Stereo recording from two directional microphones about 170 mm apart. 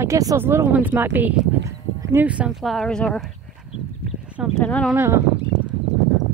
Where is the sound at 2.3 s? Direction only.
5° right (ahead or behind).